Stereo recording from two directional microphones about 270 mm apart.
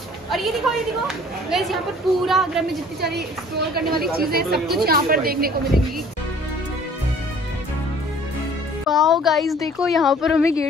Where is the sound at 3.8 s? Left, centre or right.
Right.